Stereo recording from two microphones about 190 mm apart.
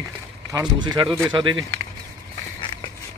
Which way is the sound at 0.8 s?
25° right (ahead or behind).